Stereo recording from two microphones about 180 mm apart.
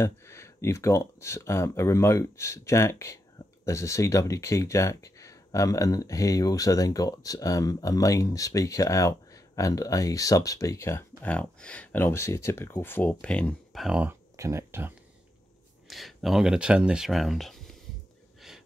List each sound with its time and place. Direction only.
0.0 s speech: 15° left (ahead or behind); by 14.1 s 5° right (ahead or behind)
14.3 s speech: 15° right (ahead or behind)
15.9 s speech: centre (ahead or behind)